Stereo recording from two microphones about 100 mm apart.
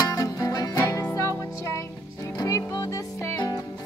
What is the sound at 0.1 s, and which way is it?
Music, 35° left (ahead or behind).